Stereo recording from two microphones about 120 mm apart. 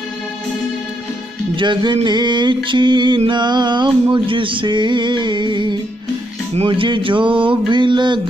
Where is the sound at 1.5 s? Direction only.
40° right (ahead or behind).